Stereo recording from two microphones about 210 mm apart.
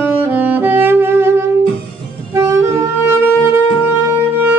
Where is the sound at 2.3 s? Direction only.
15° right (ahead or behind).